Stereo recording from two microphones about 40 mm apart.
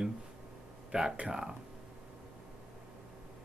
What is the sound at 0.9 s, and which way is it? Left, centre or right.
Speech, centre.